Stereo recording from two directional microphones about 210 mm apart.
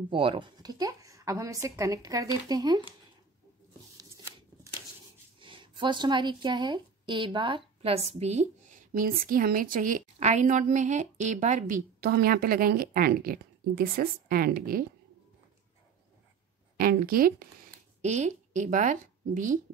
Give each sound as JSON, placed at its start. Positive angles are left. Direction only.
{"t": 0.1, "sound": "speech", "side_deg": -25}
{"t": 5.4, "sound": "speech", "side_deg": -25}
{"t": 16.7, "sound": "a woman's voice", "side_deg": -45}
{"t": 18.0, "sound": "speech", "side_deg": -35}